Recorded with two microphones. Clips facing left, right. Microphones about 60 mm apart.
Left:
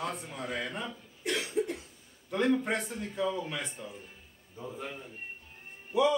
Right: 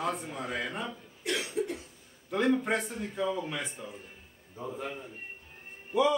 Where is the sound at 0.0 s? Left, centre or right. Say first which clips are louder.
Right 3 dB; centre.